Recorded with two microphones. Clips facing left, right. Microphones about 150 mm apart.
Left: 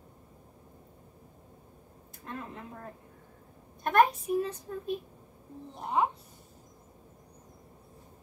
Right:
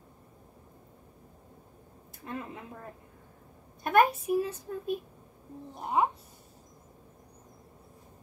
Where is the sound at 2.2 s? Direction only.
5° right (ahead or behind).